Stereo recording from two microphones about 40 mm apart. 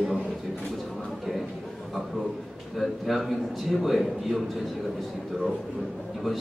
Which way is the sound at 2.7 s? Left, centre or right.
Centre.